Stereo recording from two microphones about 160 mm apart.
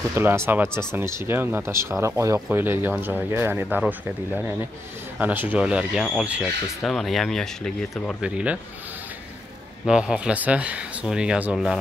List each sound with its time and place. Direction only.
0.1 s speech: 15° right (ahead or behind)
9.8 s speech: 5° right (ahead or behind)